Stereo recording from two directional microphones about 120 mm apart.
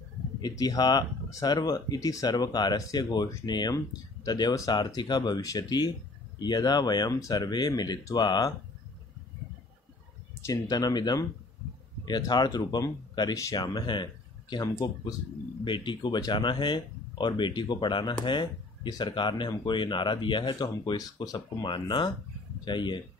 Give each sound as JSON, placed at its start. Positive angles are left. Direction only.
{"t": 0.4, "sound": "speech", "side_deg": 30}
{"t": 10.4, "sound": "speech", "side_deg": 30}